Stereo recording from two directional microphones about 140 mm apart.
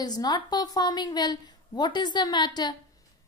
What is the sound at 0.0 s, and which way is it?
A woman's voice, 30° left (ahead or behind).